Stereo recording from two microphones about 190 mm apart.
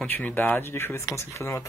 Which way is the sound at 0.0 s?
10° left (ahead or behind).